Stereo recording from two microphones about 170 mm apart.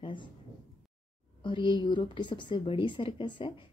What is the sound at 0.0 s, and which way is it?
Speech, 30° left (ahead or behind).